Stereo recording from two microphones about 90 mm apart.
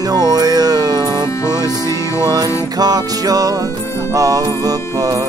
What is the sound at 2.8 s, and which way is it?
Music, 45° right (ahead or behind).